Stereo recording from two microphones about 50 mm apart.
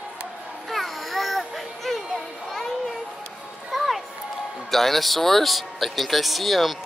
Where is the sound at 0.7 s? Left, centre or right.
Centre.